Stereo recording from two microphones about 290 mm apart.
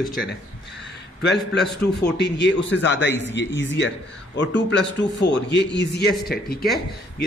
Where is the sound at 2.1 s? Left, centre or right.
Left.